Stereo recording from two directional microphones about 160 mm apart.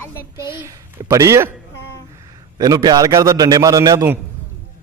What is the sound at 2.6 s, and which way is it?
A man's voice, 25° right (ahead or behind).